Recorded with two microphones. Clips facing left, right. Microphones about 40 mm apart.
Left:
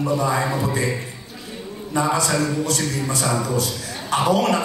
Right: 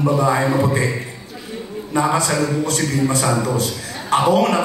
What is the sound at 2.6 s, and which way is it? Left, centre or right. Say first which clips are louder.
A man's voice: right 4 dB; right.